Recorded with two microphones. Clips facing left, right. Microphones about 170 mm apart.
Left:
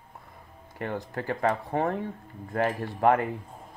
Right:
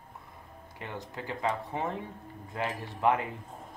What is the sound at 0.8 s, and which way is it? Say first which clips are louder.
Speech: left 7 dB; 55° left (ahead or behind).